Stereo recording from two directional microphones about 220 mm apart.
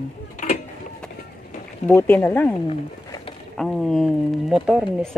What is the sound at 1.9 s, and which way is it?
Speech, 10° left (ahead or behind).